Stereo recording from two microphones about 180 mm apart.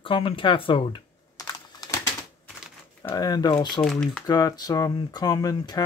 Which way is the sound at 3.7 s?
5° left (ahead or behind).